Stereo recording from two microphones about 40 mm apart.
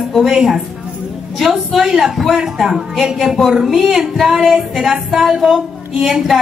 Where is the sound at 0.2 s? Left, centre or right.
Centre.